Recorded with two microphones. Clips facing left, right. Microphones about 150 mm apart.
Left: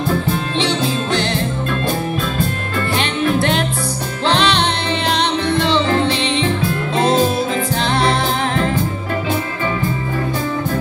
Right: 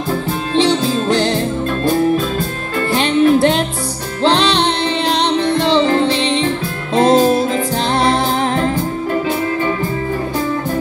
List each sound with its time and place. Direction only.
0.6 s music: 40° right (ahead or behind)
3.0 s music: 35° right (ahead or behind)